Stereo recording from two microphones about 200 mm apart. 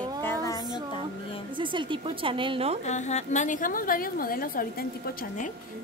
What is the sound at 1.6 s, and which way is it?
A woman's voice, 25° right (ahead or behind).